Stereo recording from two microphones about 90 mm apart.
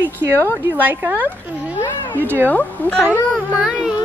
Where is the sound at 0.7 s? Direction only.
20° right (ahead or behind).